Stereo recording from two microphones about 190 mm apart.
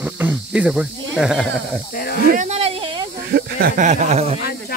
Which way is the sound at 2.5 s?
30° right (ahead or behind).